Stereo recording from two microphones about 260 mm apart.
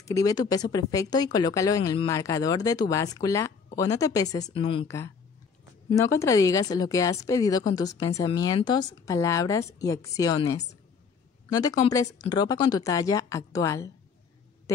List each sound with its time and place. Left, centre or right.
0.0 s speech: centre